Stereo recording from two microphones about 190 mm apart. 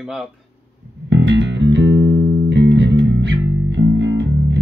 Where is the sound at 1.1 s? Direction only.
65° right (ahead or behind).